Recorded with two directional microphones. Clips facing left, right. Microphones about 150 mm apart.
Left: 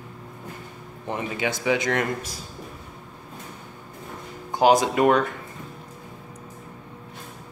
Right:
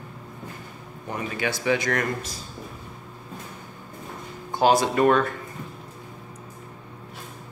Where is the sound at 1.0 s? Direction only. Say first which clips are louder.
Left 1 dB; 20° left (ahead or behind).